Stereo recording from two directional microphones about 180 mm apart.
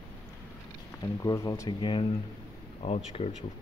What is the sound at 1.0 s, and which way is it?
Speech, 20° left (ahead or behind).